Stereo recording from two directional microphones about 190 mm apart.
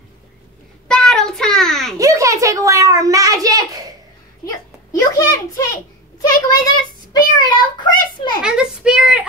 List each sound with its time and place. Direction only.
0.8 s child singing: 5° left (ahead or behind)
2.0 s a child's voice: 15° right (ahead or behind)
4.9 s a child's voice: 15° left (ahead or behind)
6.2 s child singing: 20° left (ahead or behind)
8.4 s a child's voice: 5° right (ahead or behind)